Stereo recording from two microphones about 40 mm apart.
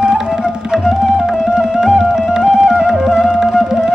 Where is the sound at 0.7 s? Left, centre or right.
Centre.